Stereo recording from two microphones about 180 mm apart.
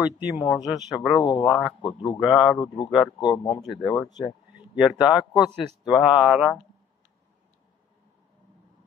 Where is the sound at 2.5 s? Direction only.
25° left (ahead or behind).